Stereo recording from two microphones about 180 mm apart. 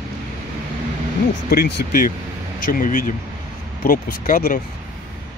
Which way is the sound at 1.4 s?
60° left (ahead or behind).